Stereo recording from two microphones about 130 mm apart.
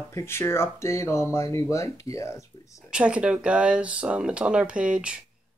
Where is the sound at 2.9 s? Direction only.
10° right (ahead or behind).